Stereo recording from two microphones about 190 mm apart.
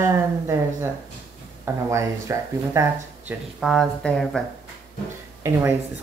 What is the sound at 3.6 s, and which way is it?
Speech, centre (ahead or behind).